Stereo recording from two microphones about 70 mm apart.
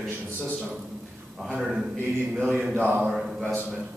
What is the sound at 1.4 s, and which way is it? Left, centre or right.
Speech, centre.